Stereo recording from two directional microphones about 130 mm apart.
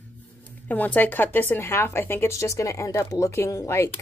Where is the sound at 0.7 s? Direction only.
15° left (ahead or behind).